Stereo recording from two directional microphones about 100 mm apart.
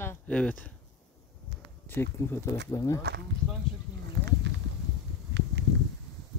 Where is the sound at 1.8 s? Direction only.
25° left (ahead or behind).